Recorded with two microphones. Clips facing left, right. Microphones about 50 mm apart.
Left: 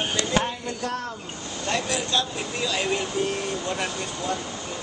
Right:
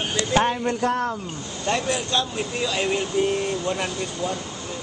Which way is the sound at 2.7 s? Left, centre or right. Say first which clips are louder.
Right 1 dB; centre.